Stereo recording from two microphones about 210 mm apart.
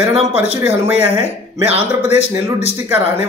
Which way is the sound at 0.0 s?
25° right (ahead or behind).